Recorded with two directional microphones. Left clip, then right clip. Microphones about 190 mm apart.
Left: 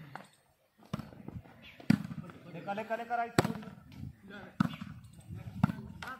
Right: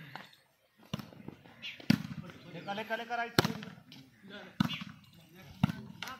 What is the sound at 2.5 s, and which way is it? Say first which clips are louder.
Speech: left 1 dB; 10° left (ahead or behind).